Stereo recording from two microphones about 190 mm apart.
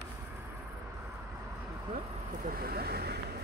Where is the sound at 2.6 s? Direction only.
55° right (ahead or behind).